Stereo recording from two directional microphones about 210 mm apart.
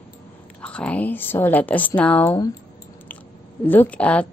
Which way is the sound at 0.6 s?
5° left (ahead or behind).